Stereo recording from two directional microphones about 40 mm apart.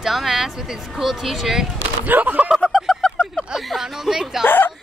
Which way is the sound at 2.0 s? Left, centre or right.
Right.